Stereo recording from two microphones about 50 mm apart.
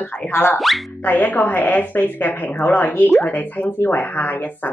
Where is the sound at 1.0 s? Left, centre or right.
Left.